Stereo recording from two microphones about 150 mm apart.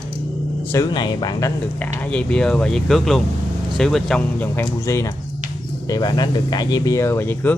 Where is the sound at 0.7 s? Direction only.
25° left (ahead or behind).